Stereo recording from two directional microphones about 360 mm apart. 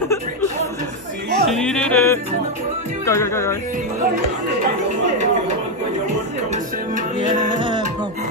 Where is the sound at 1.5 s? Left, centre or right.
Centre.